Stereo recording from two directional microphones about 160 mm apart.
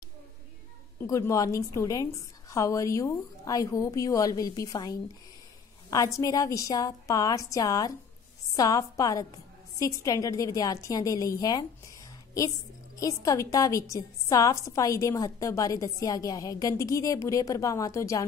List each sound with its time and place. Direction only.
1.0 s a woman's voice: 20° left (ahead or behind)